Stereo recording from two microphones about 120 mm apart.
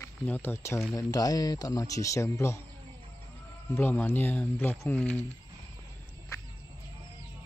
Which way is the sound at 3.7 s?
15° left (ahead or behind).